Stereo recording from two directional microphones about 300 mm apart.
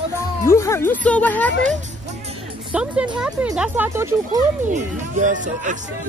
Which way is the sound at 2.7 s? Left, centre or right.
Centre.